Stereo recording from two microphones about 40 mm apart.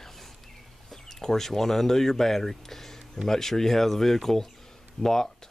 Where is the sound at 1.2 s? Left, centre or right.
Centre.